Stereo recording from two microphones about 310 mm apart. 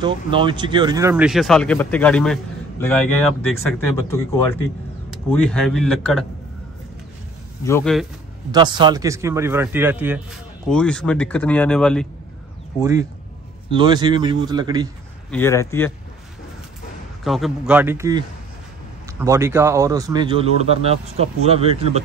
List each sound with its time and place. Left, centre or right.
0.0 s a man's voice: centre
7.6 s a man's voice: centre
8.5 s a man's voice: centre
13.7 s speech: centre
15.3 s speech: centre
17.2 s a man's voice: centre